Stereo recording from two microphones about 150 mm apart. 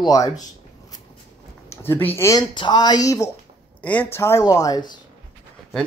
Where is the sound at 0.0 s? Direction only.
25° left (ahead or behind).